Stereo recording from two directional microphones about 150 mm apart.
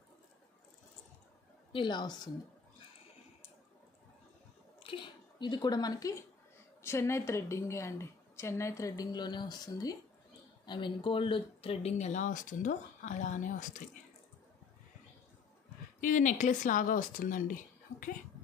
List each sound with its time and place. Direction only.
1.7 s a woman's voice: 30° left (ahead or behind)
4.8 s a sound: 35° left (ahead or behind)
6.8 s a woman's voice: 15° left (ahead or behind); by 13.8 s 60° left (ahead or behind)
16.0 s speech: 60° left (ahead or behind)